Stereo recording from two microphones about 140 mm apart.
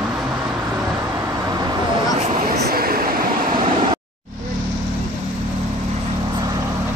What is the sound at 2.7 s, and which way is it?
Vehicle, 90° right.